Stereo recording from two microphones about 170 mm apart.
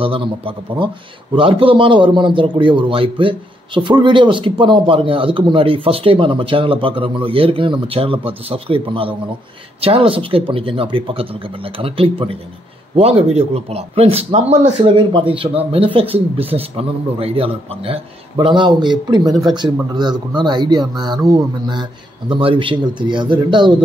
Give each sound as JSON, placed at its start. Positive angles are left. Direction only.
{"t": 0.0, "sound": "a man's voice", "side_deg": -30}